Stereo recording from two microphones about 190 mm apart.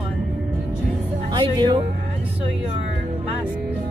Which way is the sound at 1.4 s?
25° right (ahead or behind).